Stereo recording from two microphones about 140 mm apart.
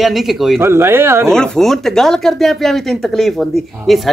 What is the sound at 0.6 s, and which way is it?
Speech, 15° right (ahead or behind).